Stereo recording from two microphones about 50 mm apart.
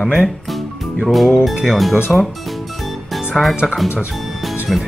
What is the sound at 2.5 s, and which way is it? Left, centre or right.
Music, centre.